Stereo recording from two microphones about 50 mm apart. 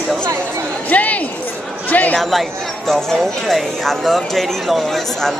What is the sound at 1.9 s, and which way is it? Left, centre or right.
Speech, left.